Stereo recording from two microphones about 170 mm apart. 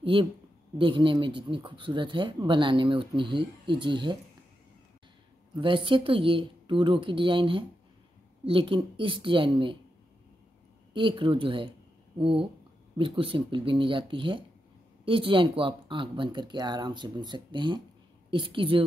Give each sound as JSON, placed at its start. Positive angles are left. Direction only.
{"t": 0.0, "sound": "a woman's voice", "side_deg": -30}
{"t": 5.6, "sound": "speech", "side_deg": -30}
{"t": 10.9, "sound": "a woman's voice", "side_deg": -30}